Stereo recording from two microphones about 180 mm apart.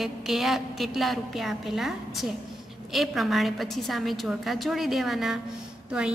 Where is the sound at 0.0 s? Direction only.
Centre (ahead or behind).